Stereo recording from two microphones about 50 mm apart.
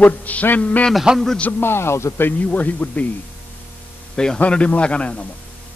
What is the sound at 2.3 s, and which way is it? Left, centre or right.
Speech, left.